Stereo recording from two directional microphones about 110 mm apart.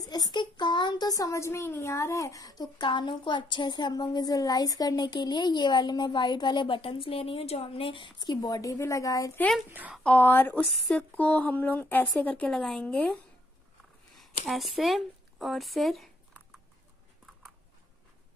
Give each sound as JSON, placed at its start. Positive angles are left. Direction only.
{"t": 0.0, "sound": "a child's voice", "side_deg": 40}
{"t": 9.7, "sound": "a woman's voice", "side_deg": -15}
{"t": 10.0, "sound": "speech", "side_deg": 15}
{"t": 14.5, "sound": "speech", "side_deg": 0}